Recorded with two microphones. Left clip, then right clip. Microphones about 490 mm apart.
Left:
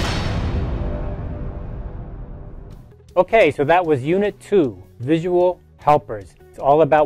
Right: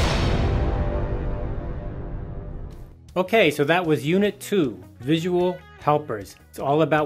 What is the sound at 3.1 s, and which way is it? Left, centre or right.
Speech, left.